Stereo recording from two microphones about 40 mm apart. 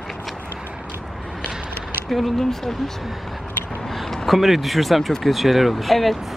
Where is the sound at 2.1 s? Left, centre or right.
Centre.